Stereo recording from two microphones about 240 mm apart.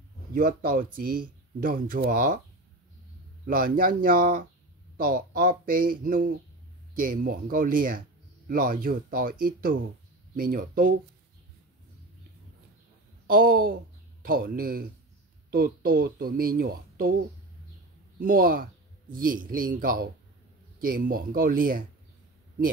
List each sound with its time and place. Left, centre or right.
0.3 s speech: right
3.4 s speech: right
13.3 s speech: right
18.2 s a man's voice: right